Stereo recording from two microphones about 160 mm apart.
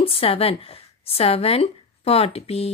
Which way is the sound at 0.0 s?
35° left (ahead or behind).